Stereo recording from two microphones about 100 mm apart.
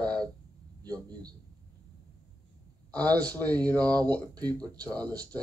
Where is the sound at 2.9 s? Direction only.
40° right (ahead or behind).